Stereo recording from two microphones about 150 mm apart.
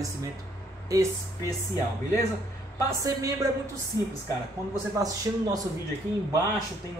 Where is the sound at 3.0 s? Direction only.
20° right (ahead or behind).